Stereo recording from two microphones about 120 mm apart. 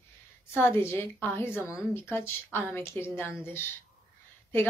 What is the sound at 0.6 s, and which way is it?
A woman's voice, 20° left (ahead or behind).